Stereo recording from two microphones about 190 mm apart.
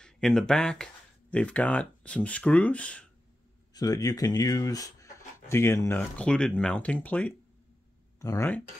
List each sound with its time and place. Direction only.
0.0 s speech: 5° left (ahead or behind)
3.7 s speech: 20° left (ahead or behind)